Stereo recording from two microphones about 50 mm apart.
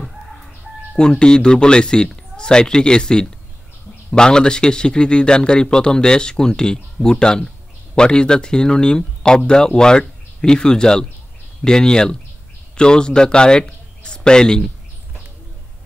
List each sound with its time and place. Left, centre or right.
0.9 s a man's voice: centre